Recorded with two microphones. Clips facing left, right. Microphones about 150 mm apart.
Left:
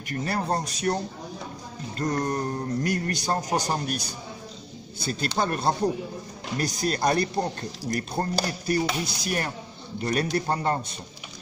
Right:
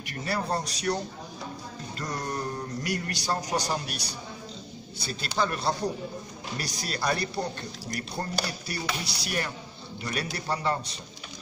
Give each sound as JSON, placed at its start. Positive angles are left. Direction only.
{"t": 0.1, "sound": "speech", "side_deg": 45}
{"t": 2.0, "sound": "speech", "side_deg": 50}